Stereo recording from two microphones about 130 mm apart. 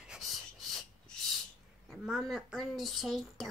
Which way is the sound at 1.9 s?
Centre (ahead or behind).